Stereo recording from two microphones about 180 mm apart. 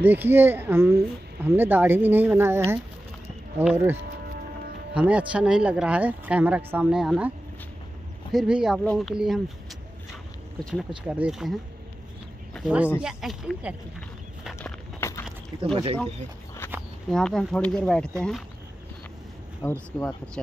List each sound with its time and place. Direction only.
0.0 s speech: 10° right (ahead or behind)
4.9 s speech: 5° right (ahead or behind)
10.6 s speech: centre (ahead or behind)
12.6 s speech: 5° right (ahead or behind)
14.6 s walk: 15° left (ahead or behind)
15.6 s speech: 30° right (ahead or behind)
17.1 s speech: 5° left (ahead or behind)
19.6 s speech: 15° left (ahead or behind)